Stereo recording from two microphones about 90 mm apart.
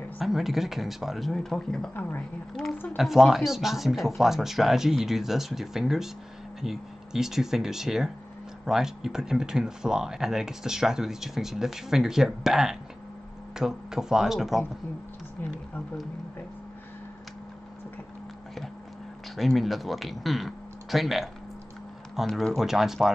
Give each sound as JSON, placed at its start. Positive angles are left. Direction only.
{"t": 0.2, "sound": "speech", "side_deg": -5}
{"t": 2.0, "sound": "speech", "side_deg": 20}
{"t": 2.6, "sound": "speech", "side_deg": 5}
{"t": 3.0, "sound": "speech", "side_deg": -5}
{"t": 19.3, "sound": "speech", "side_deg": 0}